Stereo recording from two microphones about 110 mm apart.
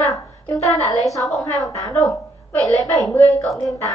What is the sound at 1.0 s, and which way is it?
Speech, centre (ahead or behind).